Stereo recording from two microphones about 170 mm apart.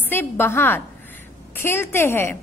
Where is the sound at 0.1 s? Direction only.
15° left (ahead or behind).